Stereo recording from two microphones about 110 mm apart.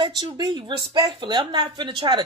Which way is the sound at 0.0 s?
45° right (ahead or behind).